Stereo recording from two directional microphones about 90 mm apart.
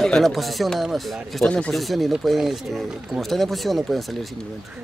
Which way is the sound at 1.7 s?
Centre (ahead or behind).